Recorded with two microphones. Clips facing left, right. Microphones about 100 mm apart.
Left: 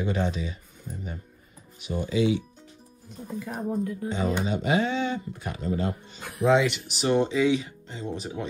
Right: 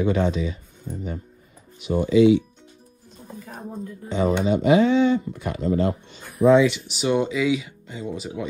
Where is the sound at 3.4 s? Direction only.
75° left (ahead or behind).